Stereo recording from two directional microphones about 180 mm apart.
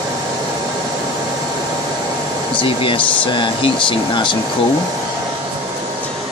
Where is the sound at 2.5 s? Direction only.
30° left (ahead or behind).